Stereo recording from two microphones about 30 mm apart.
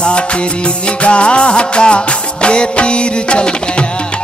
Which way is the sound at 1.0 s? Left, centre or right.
Left.